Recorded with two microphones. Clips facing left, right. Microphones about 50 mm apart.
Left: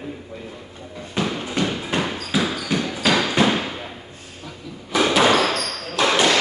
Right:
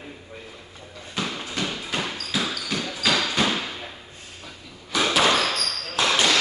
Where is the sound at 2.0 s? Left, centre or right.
Centre.